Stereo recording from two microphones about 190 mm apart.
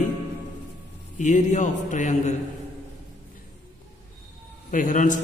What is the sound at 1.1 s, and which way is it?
A man's voice, 40° left (ahead or behind).